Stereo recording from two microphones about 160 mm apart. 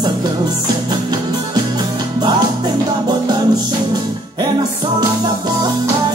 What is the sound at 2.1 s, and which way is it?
Music, 25° right (ahead or behind).